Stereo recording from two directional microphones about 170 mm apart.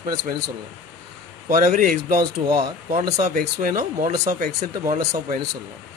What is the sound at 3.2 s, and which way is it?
Speech, 55° right (ahead or behind).